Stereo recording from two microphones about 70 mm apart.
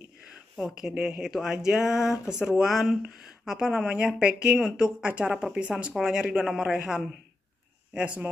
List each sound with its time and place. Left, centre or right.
0.6 s a woman's voice: centre
7.9 s speech: centre